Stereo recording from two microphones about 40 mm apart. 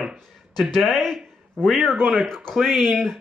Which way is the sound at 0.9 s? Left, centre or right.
Centre.